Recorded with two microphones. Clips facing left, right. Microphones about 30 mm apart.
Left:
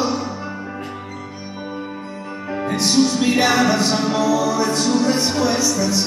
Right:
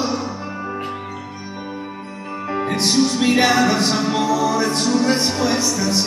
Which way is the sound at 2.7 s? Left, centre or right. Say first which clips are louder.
Left 2 dB; right.